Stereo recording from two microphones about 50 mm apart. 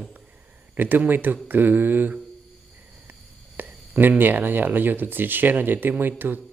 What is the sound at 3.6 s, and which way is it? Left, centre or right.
Speech, right.